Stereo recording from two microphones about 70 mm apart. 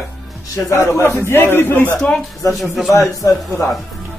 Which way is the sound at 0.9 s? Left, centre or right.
Left.